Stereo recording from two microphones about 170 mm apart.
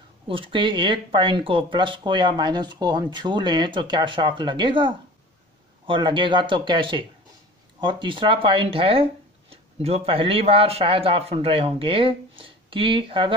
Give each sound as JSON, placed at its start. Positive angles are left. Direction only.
{"t": 0.3, "sound": "speech", "side_deg": -30}